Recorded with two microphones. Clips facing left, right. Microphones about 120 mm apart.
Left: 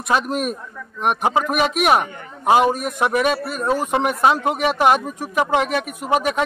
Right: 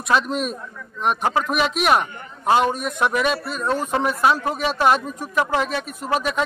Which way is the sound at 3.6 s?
10° left (ahead or behind).